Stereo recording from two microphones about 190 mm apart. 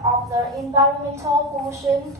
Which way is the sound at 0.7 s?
15° right (ahead or behind).